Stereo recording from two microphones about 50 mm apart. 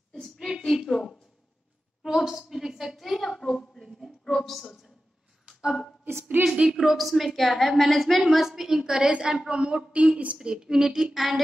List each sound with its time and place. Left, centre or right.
0.1 s a sound: centre
0.6 s a woman's voice: centre
2.1 s a sound: centre
4.3 s speech: centre
5.6 s a woman's voice: centre
6.4 s a woman's voice: right
6.7 s a woman's voice: centre; by 10.3 s right
10.3 s a woman's voice: centre